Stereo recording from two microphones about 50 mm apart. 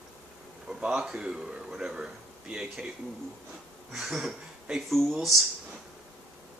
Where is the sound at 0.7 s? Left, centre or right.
Centre.